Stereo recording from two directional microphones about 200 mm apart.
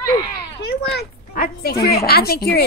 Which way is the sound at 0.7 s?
55° left (ahead or behind).